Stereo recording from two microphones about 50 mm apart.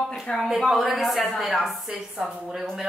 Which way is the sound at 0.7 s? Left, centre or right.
Centre.